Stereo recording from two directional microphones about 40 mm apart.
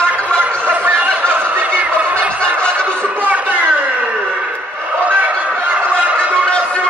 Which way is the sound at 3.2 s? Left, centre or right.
Right.